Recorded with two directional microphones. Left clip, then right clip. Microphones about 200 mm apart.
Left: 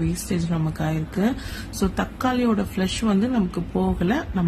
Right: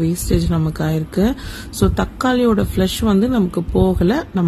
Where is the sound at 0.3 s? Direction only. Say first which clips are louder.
Right 7 dB; 25° right (ahead or behind).